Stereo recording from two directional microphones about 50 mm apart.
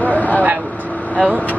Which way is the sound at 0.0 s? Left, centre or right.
Left.